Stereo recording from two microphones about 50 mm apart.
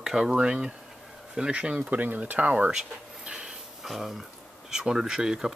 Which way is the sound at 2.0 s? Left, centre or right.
Right.